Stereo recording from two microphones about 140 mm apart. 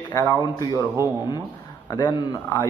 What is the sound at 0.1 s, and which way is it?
Speech, 20° left (ahead or behind).